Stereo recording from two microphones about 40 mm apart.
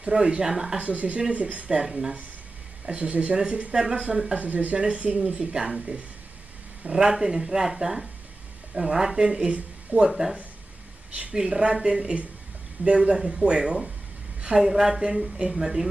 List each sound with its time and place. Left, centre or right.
0.0 s speech: right
0.7 s speech: right
1.8 s speech: centre
2.9 s speech: right
4.4 s speech: right
4.7 s speech: right
6.9 s speech: centre
9.5 s speech: right
11.3 s speech: centre
14.6 s speech: centre